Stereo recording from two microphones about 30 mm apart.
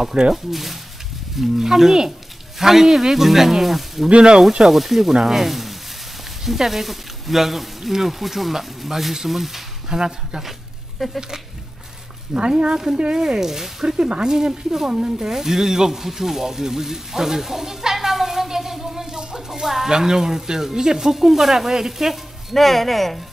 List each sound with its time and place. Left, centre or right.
0.3 s speech: centre
4.1 s speech: right
4.6 s speech: centre
9.8 s speech: right
12.4 s speech: right; by 13.9 s centre
13.9 s speech: right
14.2 s speech: right
15.2 s speech: centre
22.5 s speech: centre